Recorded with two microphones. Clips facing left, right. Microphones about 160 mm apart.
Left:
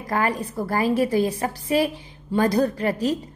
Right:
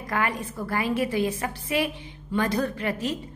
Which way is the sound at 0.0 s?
35° left (ahead or behind).